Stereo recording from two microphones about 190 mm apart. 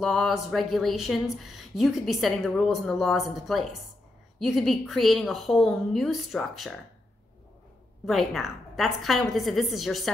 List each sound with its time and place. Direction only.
0.0 s speech: centre (ahead or behind)
8.0 s speech: centre (ahead or behind)